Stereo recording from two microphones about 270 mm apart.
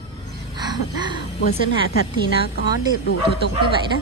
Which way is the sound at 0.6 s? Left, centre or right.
Centre.